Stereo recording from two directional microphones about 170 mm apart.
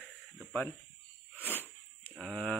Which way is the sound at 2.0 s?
5° left (ahead or behind).